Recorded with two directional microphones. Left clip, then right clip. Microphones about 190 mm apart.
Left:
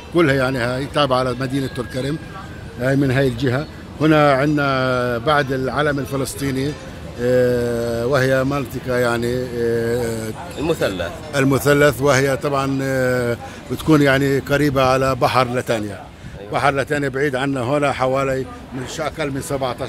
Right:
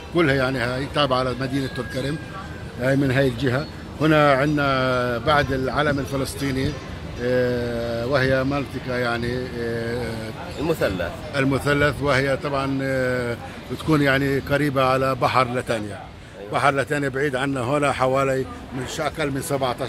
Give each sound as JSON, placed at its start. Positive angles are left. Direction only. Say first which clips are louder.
{"t": 0.1, "sound": "a man's voice", "louder": "left 3 dB", "side_deg": 65}
{"t": 10.6, "sound": "speech", "louder": "left 3 dB", "side_deg": 10}
{"t": 11.3, "sound": "speech", "louder": "left 6 dB", "side_deg": 65}
{"t": 13.8, "sound": "a man's voice", "louder": "left 5 dB", "side_deg": 45}